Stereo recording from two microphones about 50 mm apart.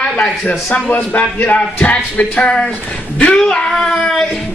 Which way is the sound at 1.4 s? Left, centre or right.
Left.